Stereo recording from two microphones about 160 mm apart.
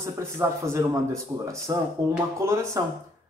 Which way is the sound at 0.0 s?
15° right (ahead or behind).